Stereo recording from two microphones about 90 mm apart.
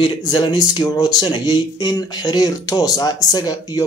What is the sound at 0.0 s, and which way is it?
Speech, 55° left (ahead or behind).